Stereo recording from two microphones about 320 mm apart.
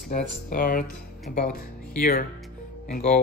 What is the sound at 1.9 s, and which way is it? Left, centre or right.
Speech, left.